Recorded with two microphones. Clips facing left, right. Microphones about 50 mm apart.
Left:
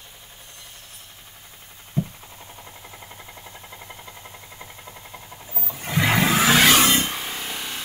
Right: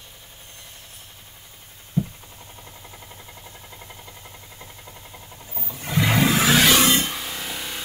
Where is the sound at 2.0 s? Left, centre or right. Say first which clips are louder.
Right 1 dB; left.